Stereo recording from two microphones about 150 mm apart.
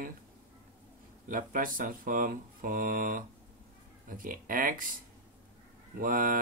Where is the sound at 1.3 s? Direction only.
65° right (ahead or behind).